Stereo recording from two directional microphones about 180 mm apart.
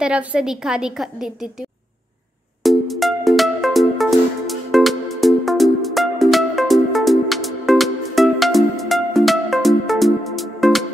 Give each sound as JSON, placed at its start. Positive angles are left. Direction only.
{"t": 0.0, "sound": "a woman's voice", "side_deg": -5}
{"t": 2.6, "sound": "music", "side_deg": 0}